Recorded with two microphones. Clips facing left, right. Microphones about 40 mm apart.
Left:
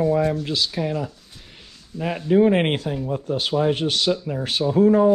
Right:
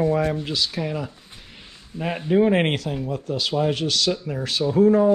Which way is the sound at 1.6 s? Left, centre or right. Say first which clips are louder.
Left 1 dB; right.